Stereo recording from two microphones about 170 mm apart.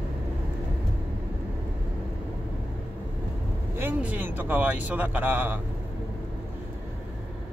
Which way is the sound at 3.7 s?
10° right (ahead or behind).